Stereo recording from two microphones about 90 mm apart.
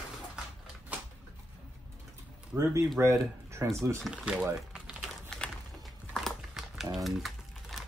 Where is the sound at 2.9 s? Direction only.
30° right (ahead or behind).